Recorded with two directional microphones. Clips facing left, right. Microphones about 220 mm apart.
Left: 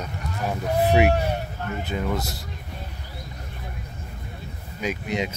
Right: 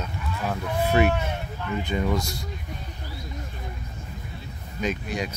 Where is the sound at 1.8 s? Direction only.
5° left (ahead or behind).